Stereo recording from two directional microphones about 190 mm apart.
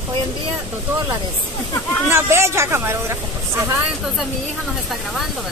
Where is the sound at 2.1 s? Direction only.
15° right (ahead or behind).